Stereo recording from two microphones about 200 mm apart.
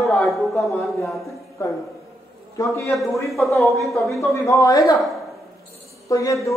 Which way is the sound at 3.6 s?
Centre (ahead or behind).